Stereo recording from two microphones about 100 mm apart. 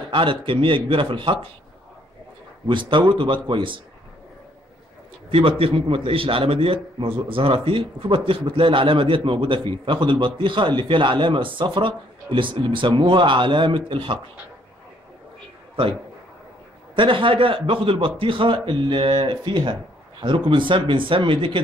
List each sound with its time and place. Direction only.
0.1 s a man's voice: 60° right (ahead or behind)
2.7 s a man's voice: 55° right (ahead or behind)
5.3 s a man's voice: 65° right (ahead or behind)
16.9 s a man's voice: 60° right (ahead or behind)